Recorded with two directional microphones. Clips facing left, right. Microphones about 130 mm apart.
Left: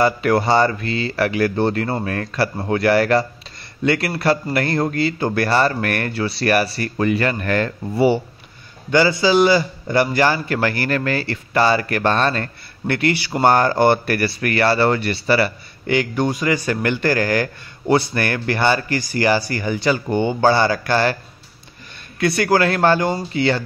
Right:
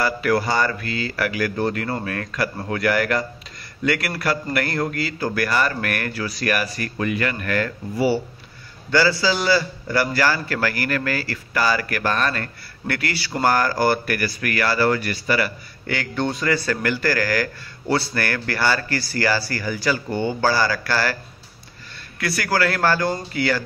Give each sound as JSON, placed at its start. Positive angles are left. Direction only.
{"t": 0.0, "sound": "a man's voice", "side_deg": 25}
{"t": 16.0, "sound": "a man's voice", "side_deg": 15}
{"t": 22.2, "sound": "a man's voice", "side_deg": 25}